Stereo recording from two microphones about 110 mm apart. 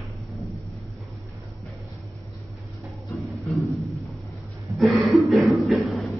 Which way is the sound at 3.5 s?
10° left (ahead or behind).